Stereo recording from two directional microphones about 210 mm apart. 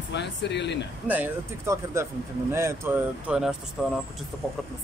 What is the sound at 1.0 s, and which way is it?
Speech, 10° right (ahead or behind).